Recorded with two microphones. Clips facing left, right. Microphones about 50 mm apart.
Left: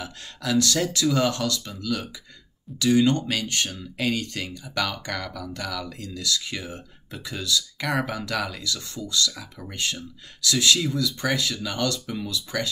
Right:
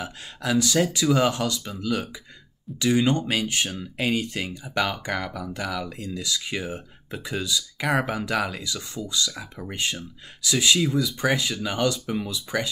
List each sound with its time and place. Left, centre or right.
0.0 s speech: right